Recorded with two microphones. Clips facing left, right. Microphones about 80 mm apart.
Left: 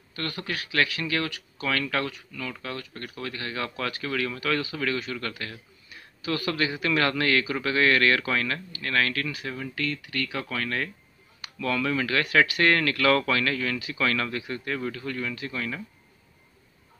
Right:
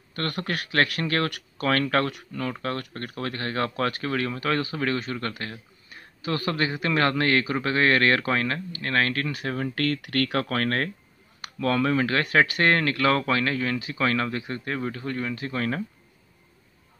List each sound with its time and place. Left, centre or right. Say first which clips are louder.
0.1 s speech: right 3 dB; right
10.4 s speech: right 4 dB; right